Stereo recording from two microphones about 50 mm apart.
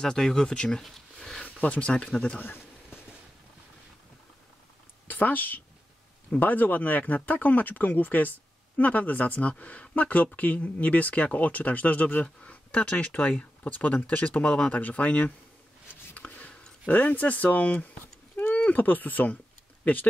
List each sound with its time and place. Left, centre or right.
0.0 s speech: centre
1.6 s speech: left
5.0 s speech: left
15.9 s a sound: left
18.5 s speech: left